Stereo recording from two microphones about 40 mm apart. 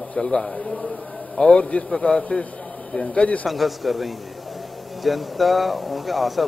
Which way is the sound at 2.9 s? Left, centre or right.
Left.